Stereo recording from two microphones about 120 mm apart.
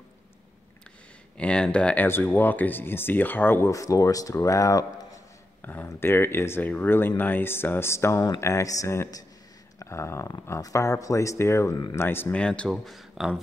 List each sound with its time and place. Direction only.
1.4 s speech: 10° left (ahead or behind); by 5.2 s 30° left (ahead or behind)
5.6 s speech: 15° left (ahead or behind); by 13.4 s centre (ahead or behind)